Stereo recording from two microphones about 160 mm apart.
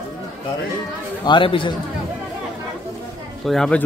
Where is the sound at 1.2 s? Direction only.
30° left (ahead or behind).